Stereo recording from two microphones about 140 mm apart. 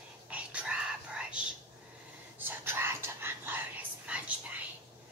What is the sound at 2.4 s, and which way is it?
Whispering, 15° right (ahead or behind).